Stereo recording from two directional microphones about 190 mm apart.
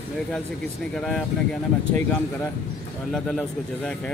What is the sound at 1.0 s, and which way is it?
Speech, 5° left (ahead or behind).